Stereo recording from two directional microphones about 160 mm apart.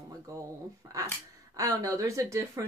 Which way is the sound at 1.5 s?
20° right (ahead or behind).